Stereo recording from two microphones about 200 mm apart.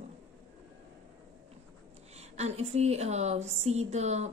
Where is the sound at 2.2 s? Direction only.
35° right (ahead or behind).